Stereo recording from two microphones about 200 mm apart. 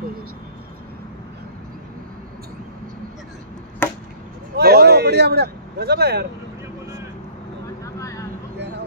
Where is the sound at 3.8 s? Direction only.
10° left (ahead or behind).